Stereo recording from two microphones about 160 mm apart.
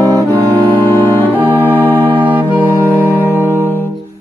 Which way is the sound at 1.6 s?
10° left (ahead or behind).